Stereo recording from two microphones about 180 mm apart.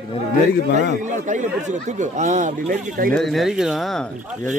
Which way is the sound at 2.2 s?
45° right (ahead or behind).